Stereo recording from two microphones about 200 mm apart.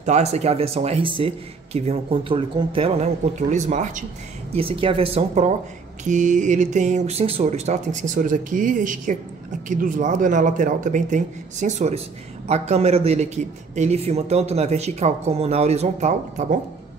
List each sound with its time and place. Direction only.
0.0 s a man's voice: 35° right (ahead or behind)